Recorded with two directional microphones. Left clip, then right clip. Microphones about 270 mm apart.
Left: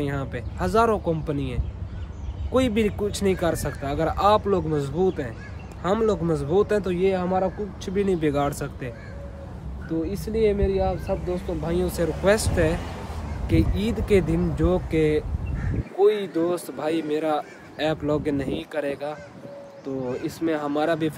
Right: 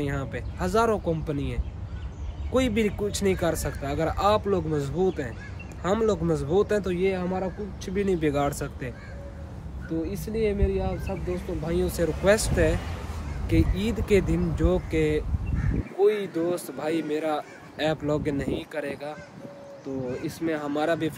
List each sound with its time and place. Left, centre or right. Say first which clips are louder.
0.0 s a man's voice: left 2 dB; centre
12.7 s speech: left 2 dB; left
13.5 s a man's voice: left 2 dB; centre